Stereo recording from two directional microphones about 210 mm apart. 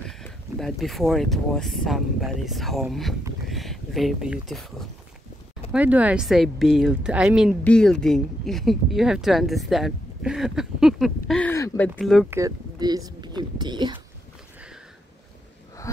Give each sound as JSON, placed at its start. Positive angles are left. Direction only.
{"t": 0.1, "sound": "speech", "side_deg": 0}
{"t": 12.3, "sound": "speech", "side_deg": -15}